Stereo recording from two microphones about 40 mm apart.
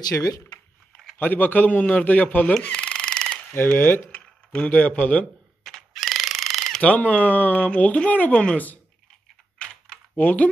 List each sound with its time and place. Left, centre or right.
1.1 s a man's voice: left
2.7 s a sound: left
3.4 s speech: left
4.1 s a sound: left
4.6 s a man's voice: left
5.6 s fowl: centre
5.9 s mechanisms: centre
6.8 s speech: left
7.6 s speech: left
8.3 s a woman's voice: left
10.1 s a man's voice: left